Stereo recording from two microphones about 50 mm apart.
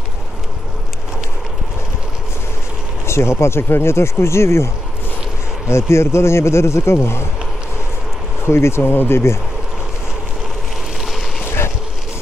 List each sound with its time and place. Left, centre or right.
3.1 s speech: left
5.7 s speech: left
8.5 s speech: left